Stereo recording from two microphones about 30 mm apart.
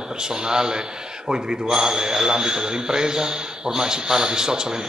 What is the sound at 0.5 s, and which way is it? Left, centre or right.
A man's voice, right.